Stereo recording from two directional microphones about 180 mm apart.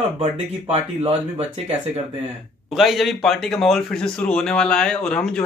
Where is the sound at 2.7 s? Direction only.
Centre (ahead or behind).